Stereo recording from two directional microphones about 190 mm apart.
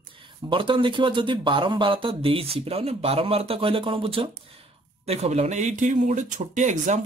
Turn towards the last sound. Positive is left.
turn(degrees=-40)  # may be behind; listen again after turning